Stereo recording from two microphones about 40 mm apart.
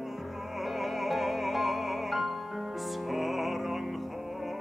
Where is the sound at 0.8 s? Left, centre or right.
Centre.